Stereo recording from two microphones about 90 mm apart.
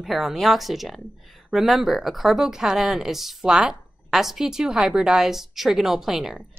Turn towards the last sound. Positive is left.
turn(degrees=-5)  # may be behind; listen again after turning